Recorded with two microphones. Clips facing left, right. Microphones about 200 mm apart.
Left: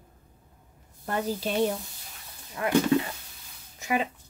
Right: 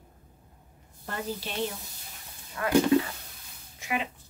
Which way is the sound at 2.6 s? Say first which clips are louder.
Left 2 dB; 20° left (ahead or behind).